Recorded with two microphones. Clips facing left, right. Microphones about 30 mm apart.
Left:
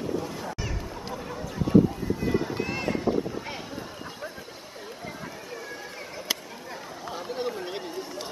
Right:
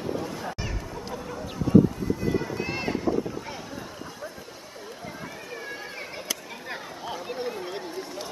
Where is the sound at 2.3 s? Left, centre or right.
Centre.